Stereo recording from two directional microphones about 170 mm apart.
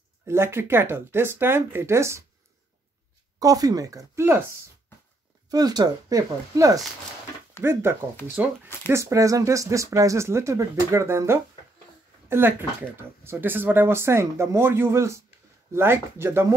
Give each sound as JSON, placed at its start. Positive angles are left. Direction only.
{"t": 0.3, "sound": "speech", "side_deg": -15}
{"t": 3.3, "sound": "speech", "side_deg": -20}
{"t": 8.8, "sound": "speech", "side_deg": -15}